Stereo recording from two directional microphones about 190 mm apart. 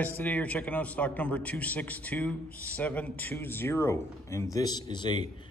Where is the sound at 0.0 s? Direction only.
5° left (ahead or behind).